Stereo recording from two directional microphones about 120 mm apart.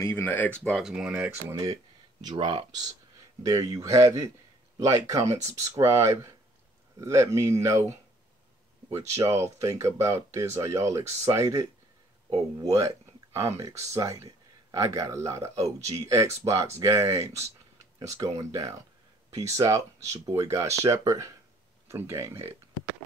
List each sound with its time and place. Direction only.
0.0 s speech: 15° left (ahead or behind)
0.7 s speech: 5° right (ahead or behind)
1.5 s speech: 30° right (ahead or behind)
2.2 s speech: 45° right (ahead or behind)
3.4 s speech: 30° right (ahead or behind)
12.6 s speech: 25° right (ahead or behind)